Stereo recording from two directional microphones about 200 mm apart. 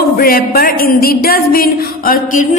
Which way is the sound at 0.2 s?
45° left (ahead or behind).